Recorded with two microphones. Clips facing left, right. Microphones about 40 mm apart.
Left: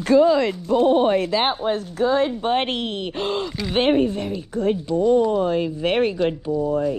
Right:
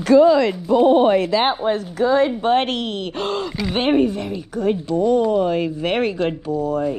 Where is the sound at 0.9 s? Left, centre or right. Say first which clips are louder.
Right 3 dB; right.